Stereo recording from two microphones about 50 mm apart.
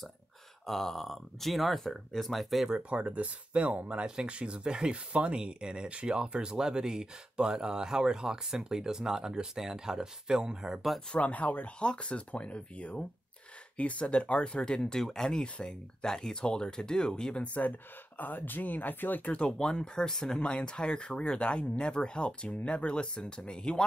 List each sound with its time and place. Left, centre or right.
0.7 s speech: centre
2.9 s speech: right
11.1 s speech: left
17.4 s speech: left
19.6 s speech: centre